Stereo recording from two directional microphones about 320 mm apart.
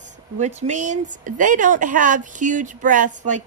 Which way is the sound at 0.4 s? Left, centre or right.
Right.